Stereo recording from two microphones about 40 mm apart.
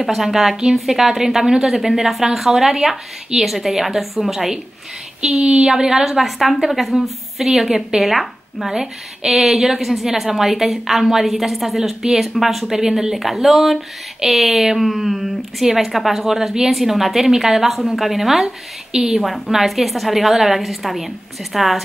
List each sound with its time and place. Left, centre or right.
0.0 s a woman's voice: centre
5.2 s a woman's voice: right
6.0 s a woman's voice: centre